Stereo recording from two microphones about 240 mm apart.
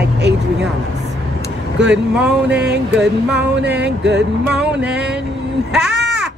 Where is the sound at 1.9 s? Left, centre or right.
Centre.